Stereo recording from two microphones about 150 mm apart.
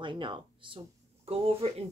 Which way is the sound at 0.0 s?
35° right (ahead or behind).